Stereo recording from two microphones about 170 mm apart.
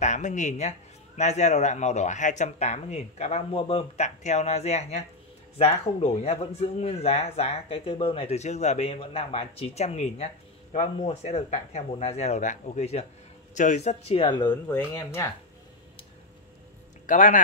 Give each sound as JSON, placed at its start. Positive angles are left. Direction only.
{"t": 0.0, "sound": "a man's voice", "side_deg": 45}
{"t": 14.5, "sound": "speech", "side_deg": 10}
{"t": 17.0, "sound": "speech", "side_deg": 50}